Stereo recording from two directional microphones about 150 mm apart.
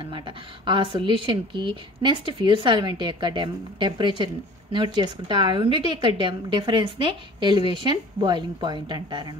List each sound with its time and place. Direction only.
0.7 s a woman's voice: 35° right (ahead or behind)